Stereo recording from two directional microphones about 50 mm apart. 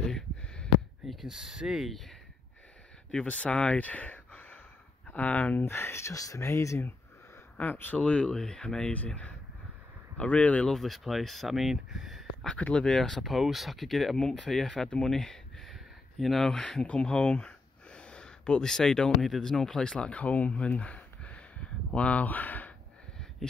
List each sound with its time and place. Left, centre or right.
1.2 s speech: centre
1.9 s speech: centre
3.1 s speech: left
5.7 s speech: left
7.5 s speech: left
8.0 s speech: left
8.9 s speech: left
10.7 s speech: centre
12.5 s speech: left
12.8 s speech: centre
13.2 s speech: centre
15.7 s a sound: centre
16.8 s speech: left
20.2 s a sound: left